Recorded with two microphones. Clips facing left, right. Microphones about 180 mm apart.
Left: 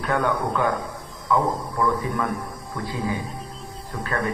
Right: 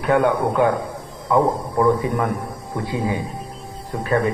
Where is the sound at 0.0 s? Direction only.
20° right (ahead or behind).